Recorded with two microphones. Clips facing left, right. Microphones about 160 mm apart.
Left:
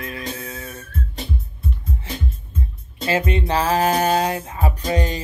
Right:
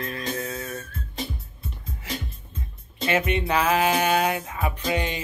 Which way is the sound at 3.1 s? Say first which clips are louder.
Left 2 dB; 30° left (ahead or behind).